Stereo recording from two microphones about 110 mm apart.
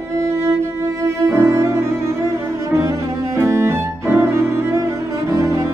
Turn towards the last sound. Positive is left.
turn(degrees=-30)  # may be behind; listen again after turning